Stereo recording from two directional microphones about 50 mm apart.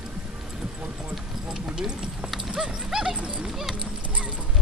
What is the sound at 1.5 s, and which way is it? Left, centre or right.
Speech, centre.